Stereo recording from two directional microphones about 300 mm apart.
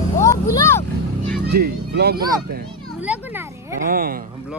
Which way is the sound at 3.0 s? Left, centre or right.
Centre.